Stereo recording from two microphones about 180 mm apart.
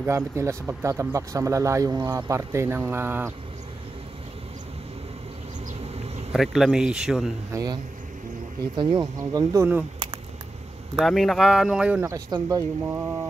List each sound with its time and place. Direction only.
0.0 s speech: 15° right (ahead or behind)
6.3 s a man's voice: centre (ahead or behind)
7.5 s speech: 20° right (ahead or behind)
11.0 s speech: centre (ahead or behind)